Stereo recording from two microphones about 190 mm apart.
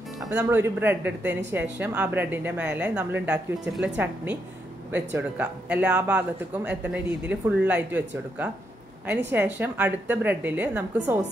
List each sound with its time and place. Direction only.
0.2 s speech: 10° right (ahead or behind)